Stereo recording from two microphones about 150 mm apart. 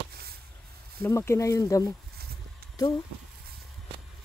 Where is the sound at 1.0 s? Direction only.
20° left (ahead or behind).